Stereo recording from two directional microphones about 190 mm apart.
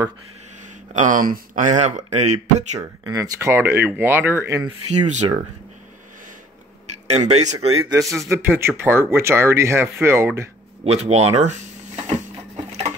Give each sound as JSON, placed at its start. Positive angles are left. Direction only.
{"t": 0.9, "sound": "speech", "side_deg": -45}
{"t": 3.1, "sound": "speech", "side_deg": -15}
{"t": 5.0, "sound": "speech", "side_deg": -40}
{"t": 7.1, "sound": "speech", "side_deg": -35}
{"t": 7.9, "sound": "speech", "side_deg": -15}
{"t": 10.8, "sound": "speech", "side_deg": -35}